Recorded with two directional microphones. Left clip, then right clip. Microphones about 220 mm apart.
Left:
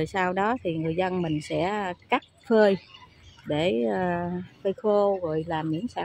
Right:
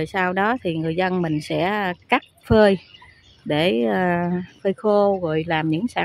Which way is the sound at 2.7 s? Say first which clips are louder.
Right 4 dB; 50° right (ahead or behind).